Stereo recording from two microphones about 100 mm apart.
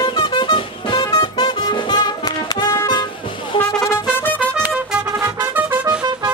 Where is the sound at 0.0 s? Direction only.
50° left (ahead or behind).